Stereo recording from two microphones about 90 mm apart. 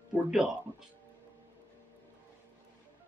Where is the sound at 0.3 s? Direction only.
5° right (ahead or behind).